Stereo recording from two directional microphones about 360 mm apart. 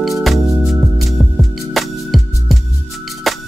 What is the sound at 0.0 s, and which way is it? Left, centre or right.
Music, centre.